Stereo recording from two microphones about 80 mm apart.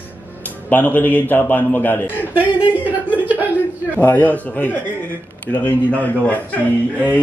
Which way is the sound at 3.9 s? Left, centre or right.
Left.